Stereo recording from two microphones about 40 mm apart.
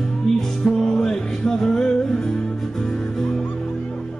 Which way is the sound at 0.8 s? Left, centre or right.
Centre.